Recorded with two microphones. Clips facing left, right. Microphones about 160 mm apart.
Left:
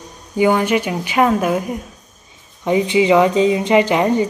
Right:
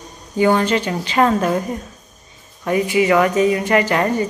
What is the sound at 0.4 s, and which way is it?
Speech, 10° left (ahead or behind).